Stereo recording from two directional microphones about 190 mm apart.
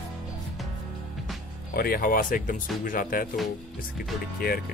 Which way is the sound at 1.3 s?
Centre (ahead or behind).